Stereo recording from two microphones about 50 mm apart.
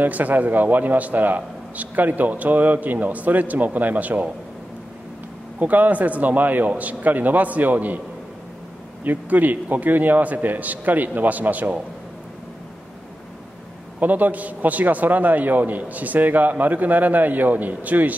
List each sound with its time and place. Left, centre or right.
0.0 s a man's voice: right
5.6 s a man's voice: right
9.0 s a man's voice: right
13.9 s a man's voice: right